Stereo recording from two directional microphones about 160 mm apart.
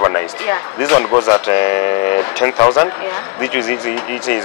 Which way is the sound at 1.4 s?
15° left (ahead or behind).